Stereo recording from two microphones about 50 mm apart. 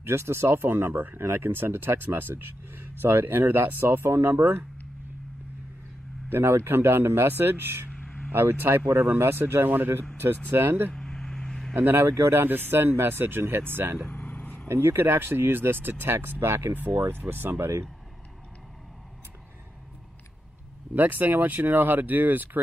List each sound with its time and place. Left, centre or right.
0.0 s speech: right
6.2 s speech: right
7.9 s a sound: centre
8.3 s speech: right
9.0 s speech: right
10.9 s vehicle: centre
11.7 s speech: right
12.1 s speech: right
12.4 s speech: right
14.0 s vehicle: left
14.7 s speech: right
20.9 s speech: right